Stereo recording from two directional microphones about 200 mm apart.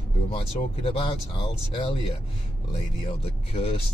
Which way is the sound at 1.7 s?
30° left (ahead or behind).